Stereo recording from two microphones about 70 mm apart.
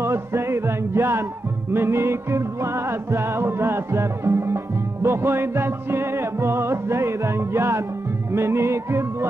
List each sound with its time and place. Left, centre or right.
0.0 s music: right